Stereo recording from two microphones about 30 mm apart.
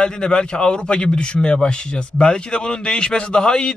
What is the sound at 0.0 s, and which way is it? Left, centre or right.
A man's voice, left.